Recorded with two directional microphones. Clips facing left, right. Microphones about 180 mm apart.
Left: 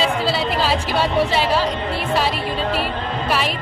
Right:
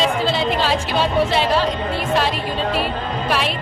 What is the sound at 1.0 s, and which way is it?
Speech, 10° left (ahead or behind).